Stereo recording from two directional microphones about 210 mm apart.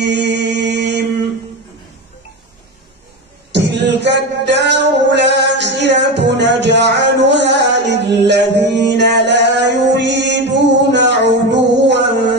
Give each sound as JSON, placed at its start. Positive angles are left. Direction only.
{"t": 0.0, "sound": "mantra", "side_deg": -55}
{"t": 3.5, "sound": "music", "side_deg": -55}